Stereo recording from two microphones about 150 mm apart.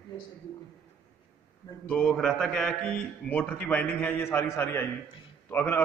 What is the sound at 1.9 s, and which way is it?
A man's voice, 5° left (ahead or behind).